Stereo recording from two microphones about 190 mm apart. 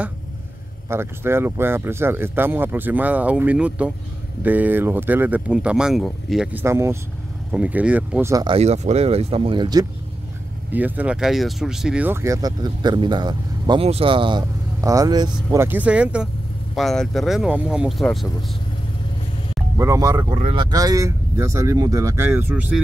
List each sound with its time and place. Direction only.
0.8 s speech: 15° right (ahead or behind)
8.5 s speech: 35° right (ahead or behind)
10.7 s speech: 10° right (ahead or behind)
19.8 s speech: 15° right (ahead or behind)
20.2 s speech: 30° right (ahead or behind)
20.7 s speech: 20° right (ahead or behind)